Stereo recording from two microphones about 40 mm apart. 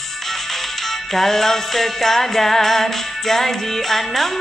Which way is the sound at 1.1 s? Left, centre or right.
Centre.